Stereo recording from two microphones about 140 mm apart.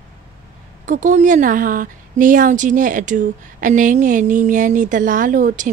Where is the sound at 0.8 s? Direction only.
70° right (ahead or behind).